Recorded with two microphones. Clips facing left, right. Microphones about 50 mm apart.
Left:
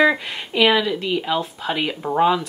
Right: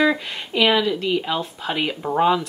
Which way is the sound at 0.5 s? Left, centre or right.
Centre.